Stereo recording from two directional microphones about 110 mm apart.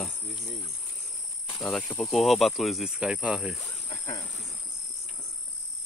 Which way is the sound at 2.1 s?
Centre (ahead or behind).